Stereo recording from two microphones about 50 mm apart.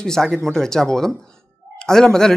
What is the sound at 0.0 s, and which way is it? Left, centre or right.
Speech, centre.